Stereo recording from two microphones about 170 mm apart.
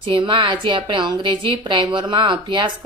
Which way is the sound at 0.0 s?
30° right (ahead or behind).